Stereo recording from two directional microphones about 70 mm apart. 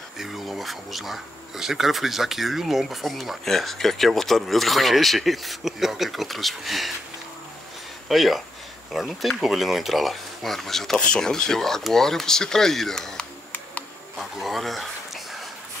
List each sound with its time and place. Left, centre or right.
0.2 s speech: centre
8.1 s speech: centre
14.1 s a sound: centre